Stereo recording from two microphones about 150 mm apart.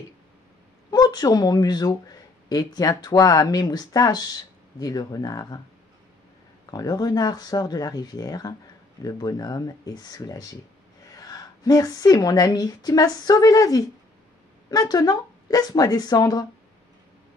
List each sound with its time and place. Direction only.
0.8 s speech: 25° left (ahead or behind)
6.6 s a woman's voice: 25° left (ahead or behind)